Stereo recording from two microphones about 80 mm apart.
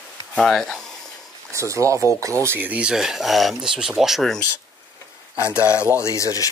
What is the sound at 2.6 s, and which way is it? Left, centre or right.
Speech, centre.